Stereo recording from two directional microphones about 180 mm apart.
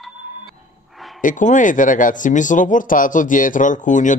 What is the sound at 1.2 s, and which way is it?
Speech, 45° left (ahead or behind).